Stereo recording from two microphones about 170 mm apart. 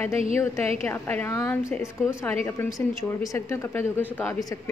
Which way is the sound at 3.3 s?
15° left (ahead or behind).